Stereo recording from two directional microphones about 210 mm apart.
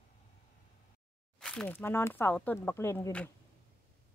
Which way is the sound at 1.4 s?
5° left (ahead or behind).